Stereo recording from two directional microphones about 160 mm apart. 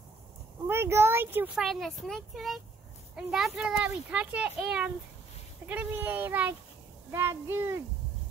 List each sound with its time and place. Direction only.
0.7 s speech: 15° right (ahead or behind)